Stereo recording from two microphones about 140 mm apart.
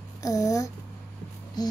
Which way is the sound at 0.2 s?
25° left (ahead or behind).